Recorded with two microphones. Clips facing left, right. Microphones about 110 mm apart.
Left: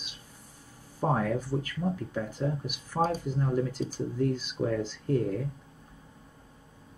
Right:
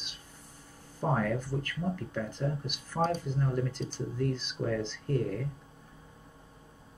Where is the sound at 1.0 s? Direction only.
10° left (ahead or behind).